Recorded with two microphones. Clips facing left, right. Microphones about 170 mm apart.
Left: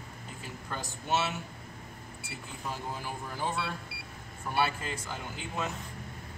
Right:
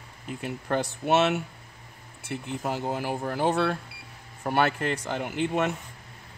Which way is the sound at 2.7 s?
70° right (ahead or behind).